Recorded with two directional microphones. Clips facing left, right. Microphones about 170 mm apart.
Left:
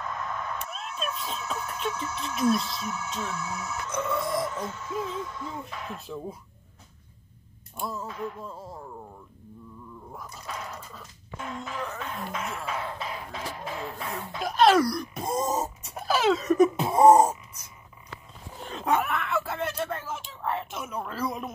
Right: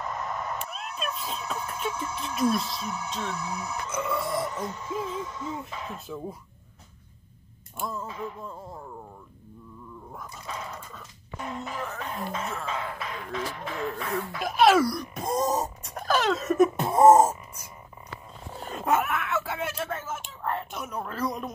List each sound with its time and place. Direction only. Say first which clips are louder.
0.0 s a sound: right 1 dB; 20° right (ahead or behind)
0.7 s cat: even; centre (ahead or behind)
1.6 s speech: even; 10° right (ahead or behind)
3.3 s speech: right 1 dB; 15° right (ahead or behind)
4.0 s speech: left 1 dB; centre (ahead or behind)
4.6 s speech: even; 10° right (ahead or behind)
7.7 s speech: even; centre (ahead or behind)
10.1 s speech: even; centre (ahead or behind)
13.3 s speech: right 2 dB; 35° left (ahead or behind)
14.4 s speech: even; 5° right (ahead or behind)
18.6 s speech: right 1 dB; centre (ahead or behind)